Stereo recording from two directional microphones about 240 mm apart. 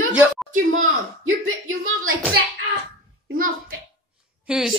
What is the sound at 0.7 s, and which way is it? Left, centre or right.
Speech, right.